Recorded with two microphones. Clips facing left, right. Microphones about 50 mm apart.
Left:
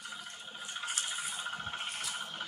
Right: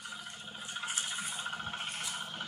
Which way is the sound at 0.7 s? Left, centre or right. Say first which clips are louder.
Even; centre.